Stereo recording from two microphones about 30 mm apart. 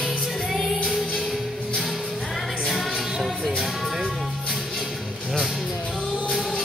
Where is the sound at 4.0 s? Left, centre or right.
Right.